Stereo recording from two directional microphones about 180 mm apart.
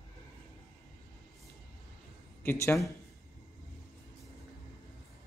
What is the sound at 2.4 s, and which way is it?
Speech, 15° left (ahead or behind).